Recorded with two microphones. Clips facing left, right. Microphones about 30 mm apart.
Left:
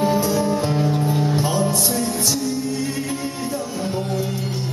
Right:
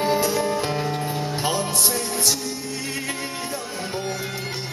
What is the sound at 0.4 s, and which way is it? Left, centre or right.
Music, right.